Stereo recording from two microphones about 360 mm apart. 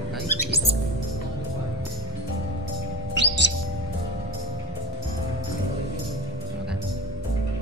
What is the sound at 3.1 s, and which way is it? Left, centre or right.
Music, right.